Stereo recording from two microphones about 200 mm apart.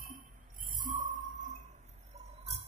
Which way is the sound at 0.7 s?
40° right (ahead or behind).